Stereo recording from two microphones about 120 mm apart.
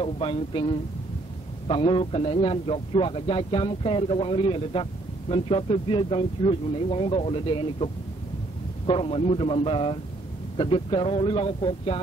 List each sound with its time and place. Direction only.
0.0 s a man's voice: 50° left (ahead or behind)